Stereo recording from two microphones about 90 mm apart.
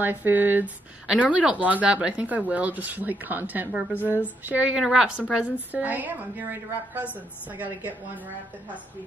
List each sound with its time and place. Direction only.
0.0 s speech: 20° right (ahead or behind)